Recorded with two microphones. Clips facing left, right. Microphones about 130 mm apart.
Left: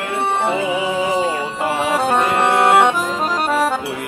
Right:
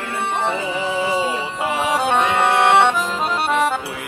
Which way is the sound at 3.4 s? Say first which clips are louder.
Left 1 dB; 5° left (ahead or behind).